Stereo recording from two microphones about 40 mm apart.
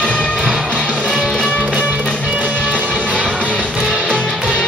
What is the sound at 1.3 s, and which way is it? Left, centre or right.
Music, left.